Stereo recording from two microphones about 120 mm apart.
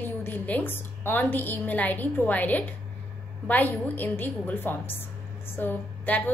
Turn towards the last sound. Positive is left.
turn(degrees=15)  # may be behind; listen again after turning